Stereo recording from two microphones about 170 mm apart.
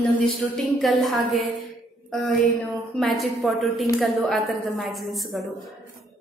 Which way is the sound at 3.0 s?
Centre (ahead or behind).